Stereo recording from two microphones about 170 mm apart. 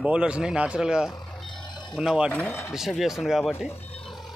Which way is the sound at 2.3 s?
10° left (ahead or behind).